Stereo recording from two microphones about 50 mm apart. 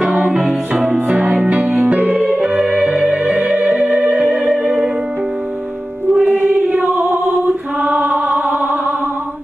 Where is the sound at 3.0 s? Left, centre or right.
Right.